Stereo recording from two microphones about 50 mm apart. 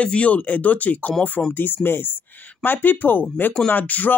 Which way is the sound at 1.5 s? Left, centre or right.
Left.